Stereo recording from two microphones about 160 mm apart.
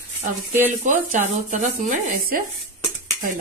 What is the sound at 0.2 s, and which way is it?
Speech, 50° right (ahead or behind).